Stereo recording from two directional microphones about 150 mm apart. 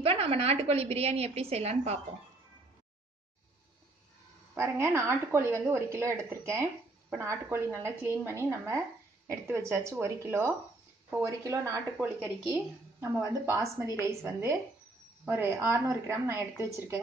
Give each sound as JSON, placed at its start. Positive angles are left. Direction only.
{"t": 0.0, "sound": "a woman's voice", "side_deg": -40}
{"t": 4.6, "sound": "a woman's voice", "side_deg": -15}